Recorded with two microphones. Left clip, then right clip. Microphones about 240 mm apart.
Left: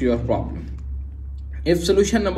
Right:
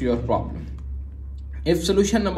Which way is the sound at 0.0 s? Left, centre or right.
Centre.